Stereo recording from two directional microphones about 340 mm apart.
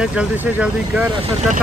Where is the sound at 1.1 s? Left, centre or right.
Centre.